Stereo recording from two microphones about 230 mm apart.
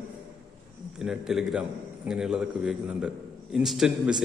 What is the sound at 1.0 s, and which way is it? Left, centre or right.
A man's voice, centre.